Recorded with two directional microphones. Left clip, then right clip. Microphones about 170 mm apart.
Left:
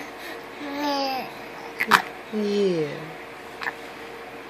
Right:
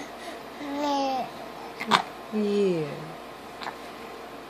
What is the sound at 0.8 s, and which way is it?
Babbling, 20° right (ahead or behind).